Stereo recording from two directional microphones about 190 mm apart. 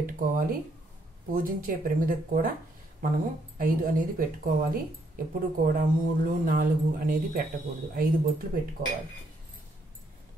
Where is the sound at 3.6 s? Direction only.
45° right (ahead or behind).